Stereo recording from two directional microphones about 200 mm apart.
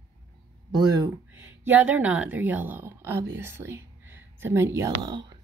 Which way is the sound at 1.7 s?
10° right (ahead or behind).